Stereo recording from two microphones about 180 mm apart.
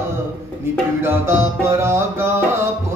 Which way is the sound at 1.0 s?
15° right (ahead or behind).